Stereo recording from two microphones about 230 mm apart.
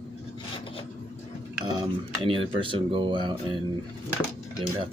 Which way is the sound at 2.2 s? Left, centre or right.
Right.